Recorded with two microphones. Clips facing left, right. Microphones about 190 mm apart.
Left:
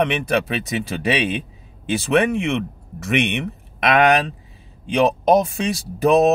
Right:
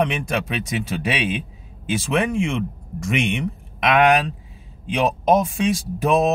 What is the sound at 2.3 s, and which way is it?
Speech, 65° left (ahead or behind).